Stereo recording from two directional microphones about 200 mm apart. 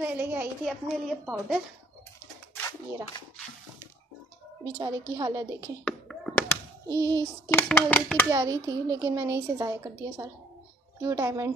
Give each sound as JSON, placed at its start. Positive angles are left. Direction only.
{"t": 0.0, "sound": "a woman's voice", "side_deg": -10}
{"t": 4.6, "sound": "a woman's voice", "side_deg": -20}
{"t": 5.9, "sound": "a sound", "side_deg": 5}
{"t": 6.9, "sound": "a sound", "side_deg": -20}
{"t": 7.5, "sound": "speech", "side_deg": 5}
{"t": 8.3, "sound": "a woman's voice", "side_deg": -15}